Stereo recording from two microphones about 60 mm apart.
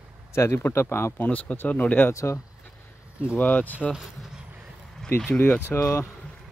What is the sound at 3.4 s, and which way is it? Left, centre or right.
Speech, left.